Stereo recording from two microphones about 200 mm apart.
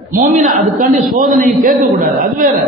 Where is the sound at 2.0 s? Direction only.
45° right (ahead or behind).